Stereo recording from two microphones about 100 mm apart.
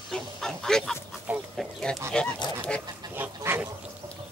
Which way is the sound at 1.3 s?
15° right (ahead or behind).